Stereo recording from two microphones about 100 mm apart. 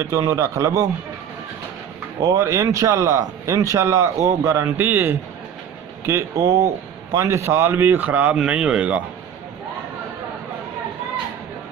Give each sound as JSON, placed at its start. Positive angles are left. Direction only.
{"t": 0.0, "sound": "a man's voice", "side_deg": -30}
{"t": 2.3, "sound": "a man's voice", "side_deg": -30}